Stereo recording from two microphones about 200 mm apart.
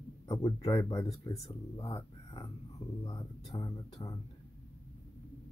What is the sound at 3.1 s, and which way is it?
Speech, 20° left (ahead or behind).